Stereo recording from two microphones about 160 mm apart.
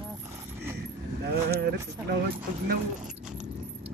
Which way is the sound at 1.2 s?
90° right.